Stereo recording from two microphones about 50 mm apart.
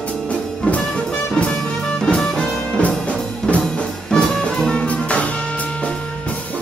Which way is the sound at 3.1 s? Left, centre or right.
Left.